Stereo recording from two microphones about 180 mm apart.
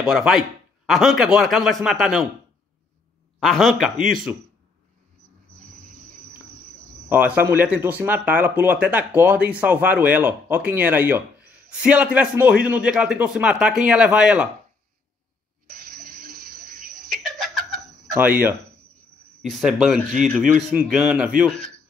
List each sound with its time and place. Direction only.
0.0 s speech: centre (ahead or behind)
3.3 s speech: centre (ahead or behind)
7.1 s speech: 10° right (ahead or behind)
15.7 s a sound: 55° right (ahead or behind)
18.2 s speech: 10° right (ahead or behind)
19.4 s speech: centre (ahead or behind)